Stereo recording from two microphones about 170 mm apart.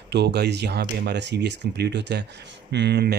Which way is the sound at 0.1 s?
80° right.